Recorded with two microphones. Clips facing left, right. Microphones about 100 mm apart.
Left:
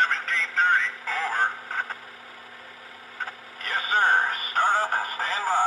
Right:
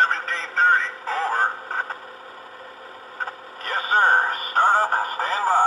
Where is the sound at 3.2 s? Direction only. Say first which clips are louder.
Right 4 dB; 40° right (ahead or behind).